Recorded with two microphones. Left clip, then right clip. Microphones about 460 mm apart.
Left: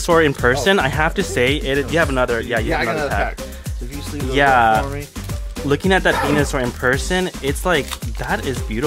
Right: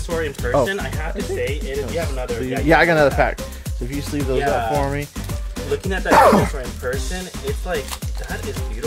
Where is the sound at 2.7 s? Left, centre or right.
Right.